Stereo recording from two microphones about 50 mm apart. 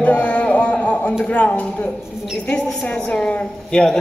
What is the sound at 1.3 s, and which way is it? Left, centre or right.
A woman's voice, left.